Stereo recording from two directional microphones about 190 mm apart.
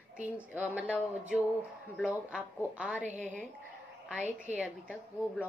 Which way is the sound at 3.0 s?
40° right (ahead or behind).